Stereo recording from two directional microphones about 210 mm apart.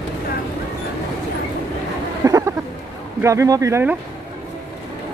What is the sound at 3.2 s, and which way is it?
Speech, 15° right (ahead or behind).